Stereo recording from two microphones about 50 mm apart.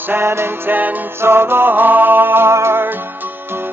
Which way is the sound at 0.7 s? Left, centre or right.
Right.